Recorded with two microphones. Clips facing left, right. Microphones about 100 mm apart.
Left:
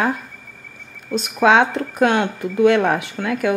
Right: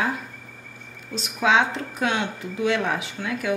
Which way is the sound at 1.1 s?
55° left (ahead or behind).